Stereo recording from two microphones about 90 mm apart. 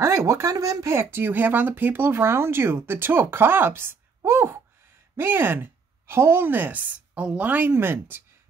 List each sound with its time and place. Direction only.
0.0 s speech: 30° right (ahead or behind)